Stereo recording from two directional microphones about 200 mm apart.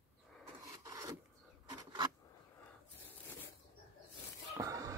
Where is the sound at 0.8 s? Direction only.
15° right (ahead or behind).